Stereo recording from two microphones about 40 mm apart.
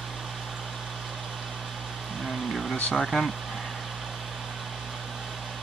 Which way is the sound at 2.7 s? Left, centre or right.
Left.